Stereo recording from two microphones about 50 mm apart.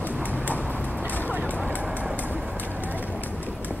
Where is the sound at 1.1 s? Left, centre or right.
Left.